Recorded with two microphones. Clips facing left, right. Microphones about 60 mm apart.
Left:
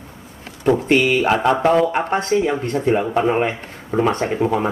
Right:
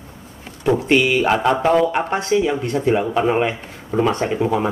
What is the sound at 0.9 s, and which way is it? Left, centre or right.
Speech, left.